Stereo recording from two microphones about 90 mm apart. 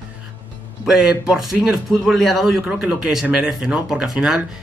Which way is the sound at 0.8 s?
10° right (ahead or behind).